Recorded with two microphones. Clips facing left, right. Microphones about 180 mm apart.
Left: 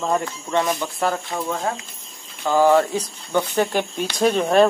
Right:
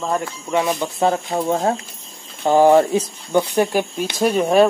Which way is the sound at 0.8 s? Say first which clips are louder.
Right 4 dB; 20° right (ahead or behind).